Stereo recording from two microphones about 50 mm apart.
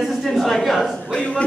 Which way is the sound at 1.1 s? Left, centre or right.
Left.